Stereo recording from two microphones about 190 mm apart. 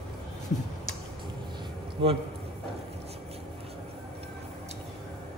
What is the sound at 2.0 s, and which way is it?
Speech, 30° right (ahead or behind).